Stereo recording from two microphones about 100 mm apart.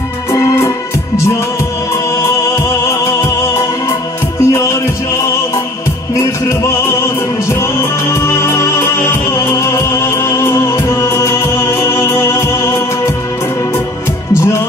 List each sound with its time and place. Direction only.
0.3 s music: 30° left (ahead or behind)
14.3 s music: 25° left (ahead or behind)